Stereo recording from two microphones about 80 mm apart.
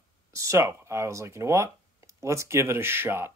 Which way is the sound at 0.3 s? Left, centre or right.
Right.